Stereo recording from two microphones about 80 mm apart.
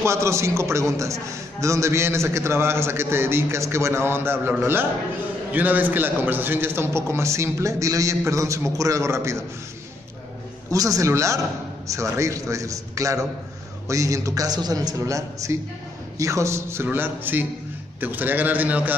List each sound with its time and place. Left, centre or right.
0.0 s a man's voice: right
10.7 s a man's voice: right
16.8 s a man's voice: right